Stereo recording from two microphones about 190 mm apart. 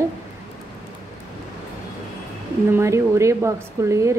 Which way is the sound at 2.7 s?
15° right (ahead or behind).